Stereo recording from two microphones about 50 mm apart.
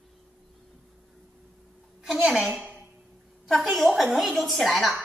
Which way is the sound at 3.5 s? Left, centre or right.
Centre.